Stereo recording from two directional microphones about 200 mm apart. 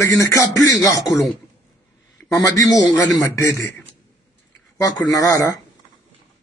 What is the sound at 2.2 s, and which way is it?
A man's voice, 15° left (ahead or behind).